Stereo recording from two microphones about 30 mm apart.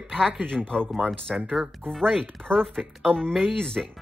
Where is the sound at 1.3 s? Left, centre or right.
Centre.